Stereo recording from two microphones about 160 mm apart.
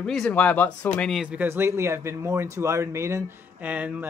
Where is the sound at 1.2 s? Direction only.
10° right (ahead or behind).